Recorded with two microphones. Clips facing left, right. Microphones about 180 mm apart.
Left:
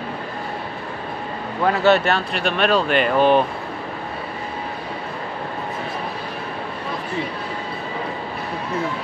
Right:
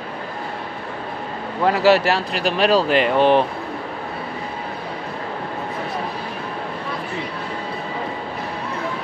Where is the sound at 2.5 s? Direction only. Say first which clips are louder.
Right 2 dB; 30° right (ahead or behind).